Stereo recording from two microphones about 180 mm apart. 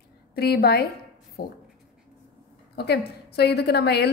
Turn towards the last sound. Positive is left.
turn(degrees=65)  # may be behind; listen again after turning